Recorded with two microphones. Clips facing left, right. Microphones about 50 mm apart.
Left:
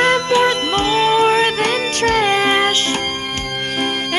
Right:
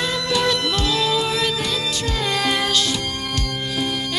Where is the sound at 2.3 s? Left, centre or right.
Left.